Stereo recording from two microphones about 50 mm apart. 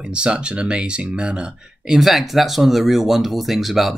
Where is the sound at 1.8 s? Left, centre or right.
Centre.